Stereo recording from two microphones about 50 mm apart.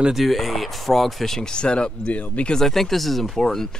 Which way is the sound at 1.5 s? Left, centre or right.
Centre.